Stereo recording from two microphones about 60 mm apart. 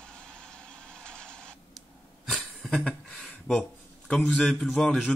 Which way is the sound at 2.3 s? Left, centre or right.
Centre.